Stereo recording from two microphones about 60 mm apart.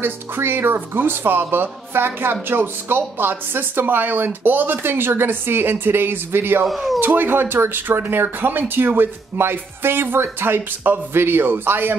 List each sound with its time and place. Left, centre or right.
0.0 s speech: right